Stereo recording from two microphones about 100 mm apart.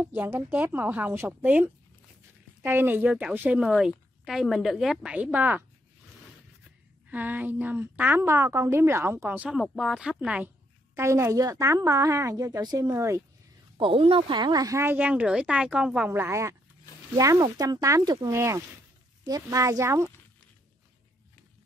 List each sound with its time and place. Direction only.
0.0 s a woman's voice: 20° right (ahead or behind)
7.1 s a woman's voice: 15° right (ahead or behind)
9.4 s a woman's voice: 5° right (ahead or behind)
11.0 s a woman's voice: 30° right (ahead or behind)
12.9 s a woman's voice: 30° right (ahead or behind)
13.7 s speech: 60° right (ahead or behind); by 14.8 s 40° right (ahead or behind)
14.8 s a woman's voice: 20° right (ahead or behind)
16.1 s a woman's voice: 25° right (ahead or behind)